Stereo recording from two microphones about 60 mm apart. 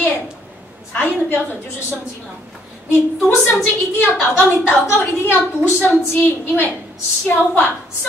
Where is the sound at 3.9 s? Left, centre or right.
Left.